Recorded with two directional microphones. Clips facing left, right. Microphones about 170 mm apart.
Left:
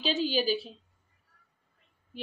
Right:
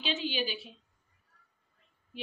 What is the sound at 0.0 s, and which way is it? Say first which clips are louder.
Speech: left 5 dB; 40° left (ahead or behind).